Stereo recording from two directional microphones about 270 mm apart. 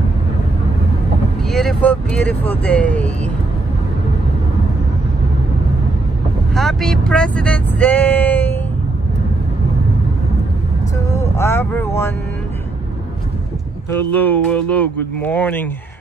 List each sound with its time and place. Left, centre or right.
1.4 s speech: centre
6.5 s speech: centre
11.0 s speech: centre
13.9 s speech: centre